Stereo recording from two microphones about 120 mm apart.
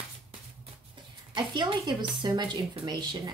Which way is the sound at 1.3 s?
40° right (ahead or behind).